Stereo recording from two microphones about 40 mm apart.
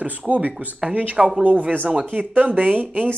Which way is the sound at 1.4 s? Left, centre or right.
Right.